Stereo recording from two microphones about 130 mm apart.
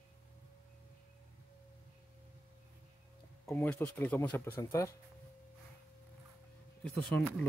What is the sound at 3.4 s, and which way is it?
Speech, 15° left (ahead or behind).